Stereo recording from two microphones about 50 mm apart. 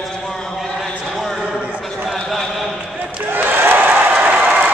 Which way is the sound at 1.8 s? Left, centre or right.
Centre.